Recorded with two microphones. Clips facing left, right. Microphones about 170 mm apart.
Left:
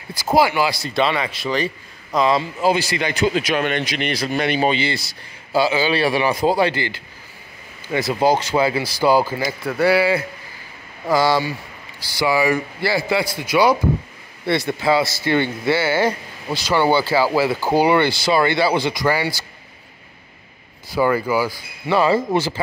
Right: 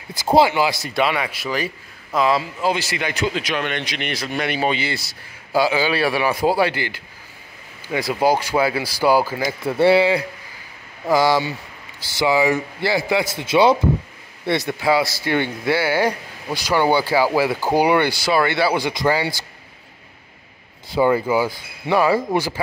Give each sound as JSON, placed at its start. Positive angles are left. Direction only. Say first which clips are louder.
{"t": 0.2, "sound": "a man's voice", "louder": "right 1 dB", "side_deg": -25}
{"t": 3.5, "sound": "a man's voice", "louder": "left 4 dB", "side_deg": 40}
{"t": 4.5, "sound": "a man's voice", "louder": "left 2 dB", "side_deg": 0}
{"t": 9.5, "sound": "a man's voice", "louder": "right 4 dB", "side_deg": -25}
{"t": 14.7, "sound": "a man's voice", "louder": "even", "side_deg": -10}
{"t": 20.9, "sound": "a man's voice", "louder": "right 1 dB", "side_deg": -20}